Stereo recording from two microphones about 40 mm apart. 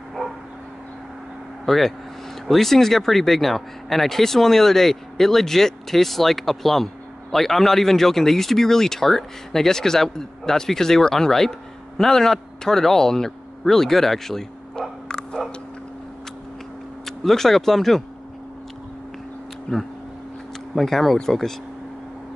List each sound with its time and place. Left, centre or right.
1.7 s a man's voice: centre
15.0 s a sound: centre
17.0 s speech: centre
19.7 s speech: left
20.7 s speech: centre